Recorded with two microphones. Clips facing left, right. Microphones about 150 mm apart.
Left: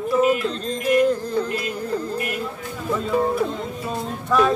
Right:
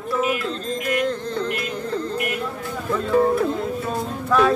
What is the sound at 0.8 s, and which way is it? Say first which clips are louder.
Speech: left 6 dB; 10° left (ahead or behind).